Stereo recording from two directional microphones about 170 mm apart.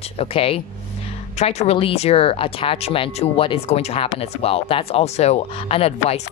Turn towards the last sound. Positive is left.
turn(degrees=35)  # may be behind; listen again after turning